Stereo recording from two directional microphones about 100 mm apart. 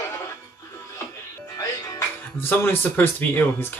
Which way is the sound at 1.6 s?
30° left (ahead or behind).